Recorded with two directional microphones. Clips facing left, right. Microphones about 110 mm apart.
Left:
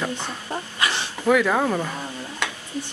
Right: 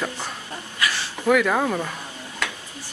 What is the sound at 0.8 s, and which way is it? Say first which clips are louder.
Dog: even; 20° left (ahead or behind).